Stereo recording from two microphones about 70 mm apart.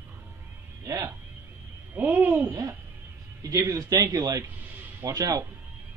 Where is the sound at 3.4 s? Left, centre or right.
Right.